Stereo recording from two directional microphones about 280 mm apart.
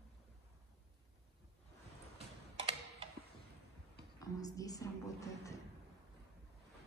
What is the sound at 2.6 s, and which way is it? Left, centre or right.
Tick-tock, centre.